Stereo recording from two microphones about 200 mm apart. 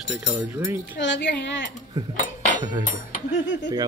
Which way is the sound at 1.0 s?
65° left (ahead or behind).